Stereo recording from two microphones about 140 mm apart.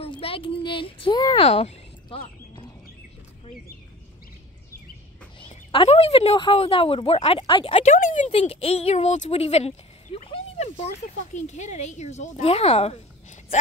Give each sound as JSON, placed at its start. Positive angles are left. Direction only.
{"t": 0.0, "sound": "speech", "side_deg": 40}
{"t": 1.4, "sound": "a sound", "side_deg": 50}
{"t": 5.4, "sound": "a sound", "side_deg": 40}
{"t": 6.3, "sound": "speech", "side_deg": 40}
{"t": 7.9, "sound": "speech", "side_deg": 60}
{"t": 8.3, "sound": "speech", "side_deg": 45}
{"t": 11.3, "sound": "speech", "side_deg": 55}